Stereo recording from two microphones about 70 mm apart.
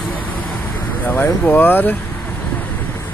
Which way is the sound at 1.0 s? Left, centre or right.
Left.